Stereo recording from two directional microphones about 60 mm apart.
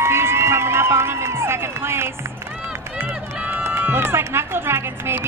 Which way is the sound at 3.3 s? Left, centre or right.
Right.